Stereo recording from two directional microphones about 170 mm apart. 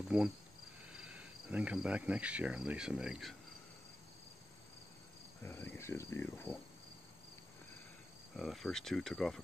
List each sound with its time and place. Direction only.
0.9 s speech: 5° right (ahead or behind)
5.4 s speech: 10° left (ahead or behind)
8.4 s speech: centre (ahead or behind)